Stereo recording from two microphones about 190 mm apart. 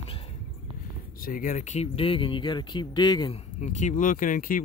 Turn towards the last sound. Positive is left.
turn(degrees=45)  # may be behind; listen again after turning